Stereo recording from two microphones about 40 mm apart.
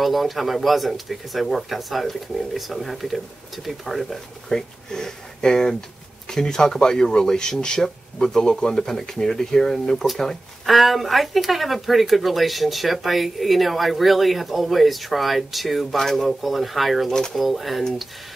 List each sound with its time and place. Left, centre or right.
0.0 s speech: centre
4.5 s speech: centre